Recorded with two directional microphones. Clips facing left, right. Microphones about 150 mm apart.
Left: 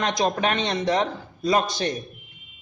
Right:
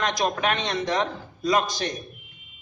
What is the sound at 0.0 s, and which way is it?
Speech, 25° left (ahead or behind).